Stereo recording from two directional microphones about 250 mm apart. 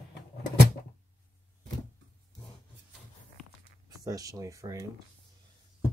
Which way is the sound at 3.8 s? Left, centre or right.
Centre.